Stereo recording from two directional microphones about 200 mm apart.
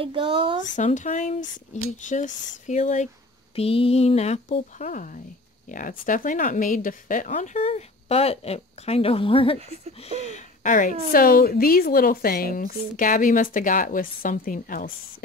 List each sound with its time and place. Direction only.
0.0 s speech: 25° right (ahead or behind)
0.7 s speech: 40° left (ahead or behind)
9.6 s speech: 30° right (ahead or behind)
9.9 s a woman's voice: 30° left (ahead or behind)